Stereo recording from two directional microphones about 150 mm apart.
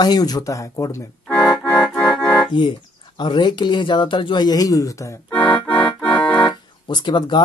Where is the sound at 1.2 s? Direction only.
5° left (ahead or behind).